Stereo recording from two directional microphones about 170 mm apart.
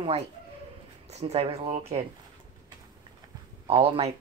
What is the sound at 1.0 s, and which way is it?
Speech, 40° right (ahead or behind).